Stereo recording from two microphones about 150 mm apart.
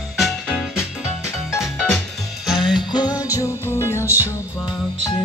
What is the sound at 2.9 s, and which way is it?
Music, 25° left (ahead or behind).